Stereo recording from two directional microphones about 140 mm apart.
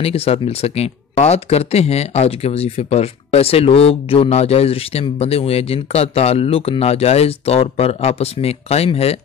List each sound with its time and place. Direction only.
0.0 s speech: 45° left (ahead or behind)